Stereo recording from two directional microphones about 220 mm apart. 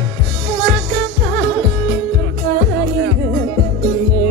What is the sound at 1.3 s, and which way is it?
Music, 55° right (ahead or behind).